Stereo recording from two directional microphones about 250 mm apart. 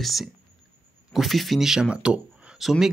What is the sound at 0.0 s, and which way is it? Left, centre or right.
Speech, centre.